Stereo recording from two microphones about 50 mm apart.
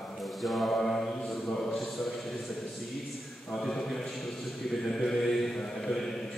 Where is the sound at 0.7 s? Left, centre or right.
Centre.